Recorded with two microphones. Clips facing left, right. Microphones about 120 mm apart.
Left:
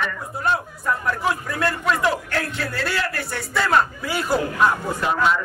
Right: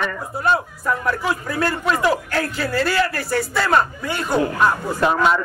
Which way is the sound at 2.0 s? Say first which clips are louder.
Right 3 dB; centre (ahead or behind).